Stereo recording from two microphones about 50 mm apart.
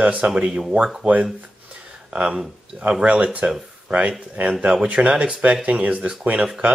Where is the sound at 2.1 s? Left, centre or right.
Right.